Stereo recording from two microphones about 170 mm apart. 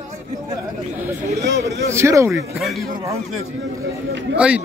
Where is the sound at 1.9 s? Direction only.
15° right (ahead or behind).